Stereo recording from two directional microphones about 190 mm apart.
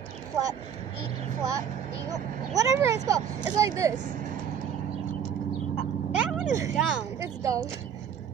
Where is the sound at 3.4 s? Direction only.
20° right (ahead or behind).